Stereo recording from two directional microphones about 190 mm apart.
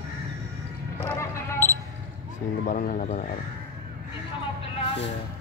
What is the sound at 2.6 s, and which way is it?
Speech, 45° left (ahead or behind).